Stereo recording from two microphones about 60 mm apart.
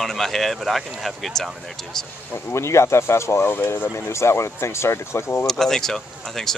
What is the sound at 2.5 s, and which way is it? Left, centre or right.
Speech, left.